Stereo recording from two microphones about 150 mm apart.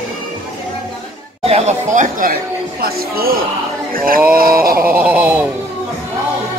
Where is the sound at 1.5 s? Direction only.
45° right (ahead or behind).